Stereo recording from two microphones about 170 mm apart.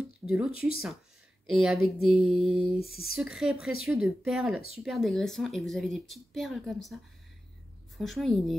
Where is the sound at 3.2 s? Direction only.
5° right (ahead or behind).